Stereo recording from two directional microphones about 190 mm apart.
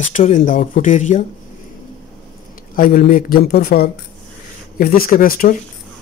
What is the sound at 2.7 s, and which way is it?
A man's voice, 45° left (ahead or behind).